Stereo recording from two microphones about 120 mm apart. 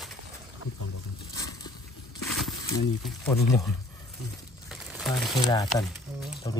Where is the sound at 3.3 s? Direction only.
25° left (ahead or behind).